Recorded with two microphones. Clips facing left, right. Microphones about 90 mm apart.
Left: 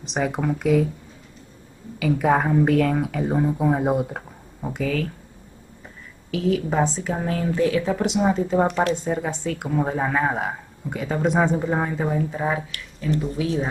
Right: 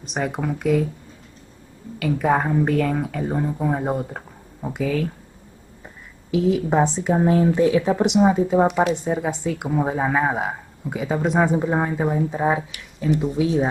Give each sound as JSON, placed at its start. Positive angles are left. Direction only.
{"t": 0.0, "sound": "a woman's voice", "side_deg": 0}
{"t": 2.0, "sound": "a woman's voice", "side_deg": 0}
{"t": 6.3, "sound": "a woman's voice", "side_deg": -15}